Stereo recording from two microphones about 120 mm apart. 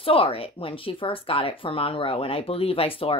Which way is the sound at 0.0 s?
50° left (ahead or behind).